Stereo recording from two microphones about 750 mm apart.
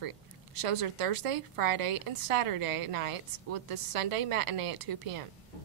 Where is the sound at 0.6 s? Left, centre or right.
Right.